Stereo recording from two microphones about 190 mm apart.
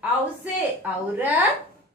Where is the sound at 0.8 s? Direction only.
10° right (ahead or behind).